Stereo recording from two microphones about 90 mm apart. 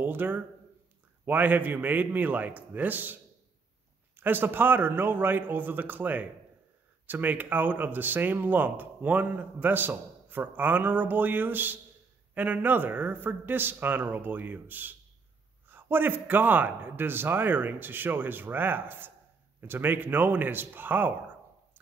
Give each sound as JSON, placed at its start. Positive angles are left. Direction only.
{"t": 0.0, "sound": "speech", "side_deg": -20}
{"t": 4.2, "sound": "speech", "side_deg": -20}